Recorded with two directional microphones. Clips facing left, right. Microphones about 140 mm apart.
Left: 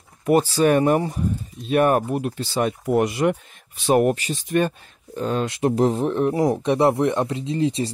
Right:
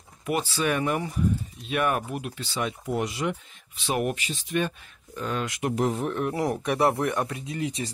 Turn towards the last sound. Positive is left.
turn(degrees=30)  # may be behind; listen again after turning